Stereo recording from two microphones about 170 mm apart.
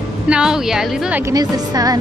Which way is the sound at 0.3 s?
5° right (ahead or behind).